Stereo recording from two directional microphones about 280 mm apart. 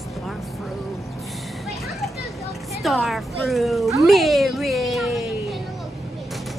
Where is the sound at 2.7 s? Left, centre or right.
Centre.